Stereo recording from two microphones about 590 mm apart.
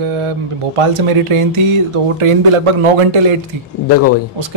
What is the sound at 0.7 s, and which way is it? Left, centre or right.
A man's voice, right.